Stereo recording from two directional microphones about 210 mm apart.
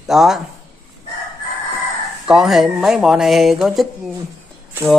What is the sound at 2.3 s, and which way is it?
Speech, centre (ahead or behind).